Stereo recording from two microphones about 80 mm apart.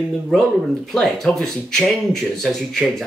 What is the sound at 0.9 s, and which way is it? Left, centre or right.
Speech, centre.